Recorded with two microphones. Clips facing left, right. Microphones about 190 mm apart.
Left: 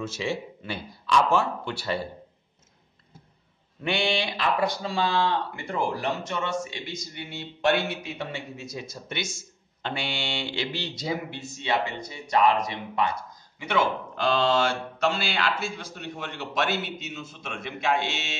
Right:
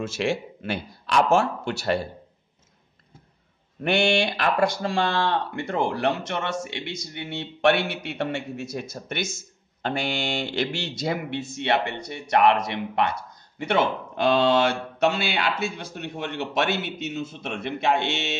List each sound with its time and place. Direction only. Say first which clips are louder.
0.0 s a man's voice: right 4 dB; 90° right
4.2 s speech: right 3 dB; 50° right (ahead or behind)
4.9 s speech: right 1 dB; 65° right (ahead or behind); by 10.7 s 45° right (ahead or behind)
10.7 s speech: right 3 dB; 75° right (ahead or behind)